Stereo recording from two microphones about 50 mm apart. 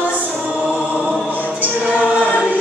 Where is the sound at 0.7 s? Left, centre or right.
Right.